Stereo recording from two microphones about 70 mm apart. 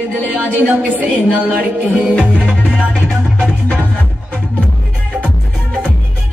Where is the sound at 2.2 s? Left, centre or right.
Centre.